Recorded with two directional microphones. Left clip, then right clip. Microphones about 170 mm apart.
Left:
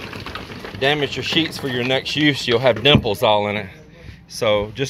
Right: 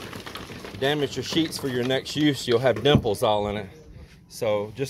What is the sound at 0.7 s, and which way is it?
Speech, 20° right (ahead or behind).